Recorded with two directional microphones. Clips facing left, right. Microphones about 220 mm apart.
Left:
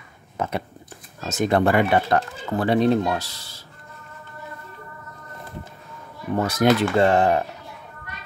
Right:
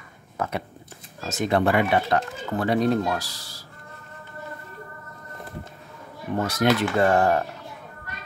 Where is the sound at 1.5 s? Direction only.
50° left (ahead or behind).